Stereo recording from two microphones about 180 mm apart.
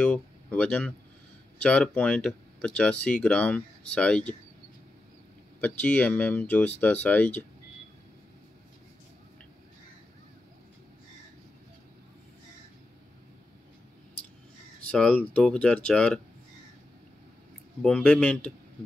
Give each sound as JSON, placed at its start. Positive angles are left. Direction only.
{"t": 0.0, "sound": "speech", "side_deg": 5}
{"t": 5.6, "sound": "speech", "side_deg": 10}
{"t": 14.9, "sound": "speech", "side_deg": 5}
{"t": 17.8, "sound": "speech", "side_deg": 5}